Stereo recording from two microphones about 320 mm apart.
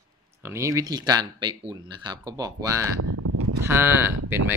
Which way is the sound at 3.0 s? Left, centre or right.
Right.